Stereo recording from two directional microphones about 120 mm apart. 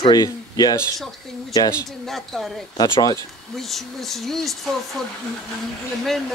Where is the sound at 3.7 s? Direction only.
Centre (ahead or behind).